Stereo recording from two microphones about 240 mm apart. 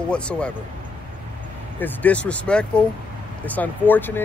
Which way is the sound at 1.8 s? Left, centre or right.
Centre.